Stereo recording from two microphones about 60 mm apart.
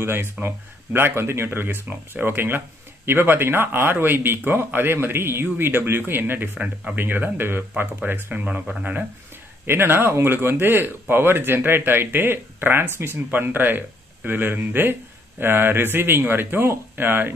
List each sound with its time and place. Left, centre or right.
0.0 s speech: right
9.7 s speech: right